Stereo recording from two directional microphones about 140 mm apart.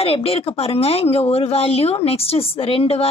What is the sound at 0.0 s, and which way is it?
Speech, 45° left (ahead or behind).